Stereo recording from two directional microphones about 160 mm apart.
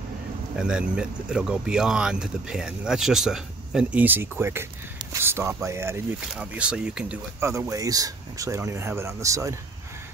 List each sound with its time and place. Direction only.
0.6 s speech: 5° right (ahead or behind)
7.3 s speech: 15° right (ahead or behind)